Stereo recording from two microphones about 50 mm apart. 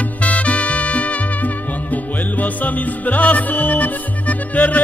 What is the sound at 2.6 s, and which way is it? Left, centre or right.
Music, left.